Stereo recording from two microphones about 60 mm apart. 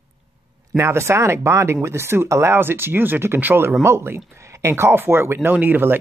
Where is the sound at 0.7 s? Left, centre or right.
Right.